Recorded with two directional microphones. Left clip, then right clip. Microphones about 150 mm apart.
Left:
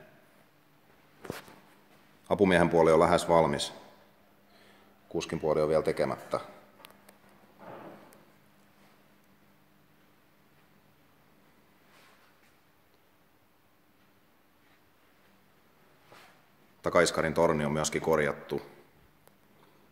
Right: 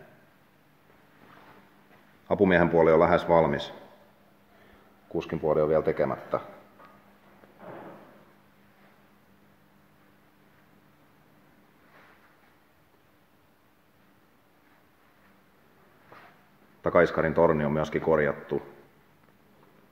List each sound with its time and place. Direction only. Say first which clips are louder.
2.2 s a man's voice: right 2 dB; 15° left (ahead or behind)
5.1 s a man's voice: right 3 dB; 10° left (ahead or behind)
6.8 s a sound: even; 25° left (ahead or behind)
16.8 s speech: right 3 dB; centre (ahead or behind)